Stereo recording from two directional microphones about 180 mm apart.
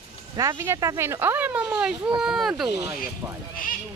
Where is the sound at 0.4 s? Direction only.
15° right (ahead or behind).